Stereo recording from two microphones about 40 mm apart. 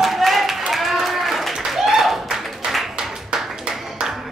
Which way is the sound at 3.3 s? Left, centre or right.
Centre.